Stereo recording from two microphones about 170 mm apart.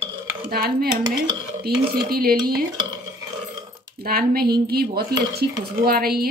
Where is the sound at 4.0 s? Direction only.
60° right (ahead or behind).